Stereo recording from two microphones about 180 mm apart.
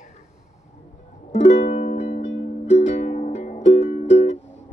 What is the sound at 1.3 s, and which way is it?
Music, 40° left (ahead or behind).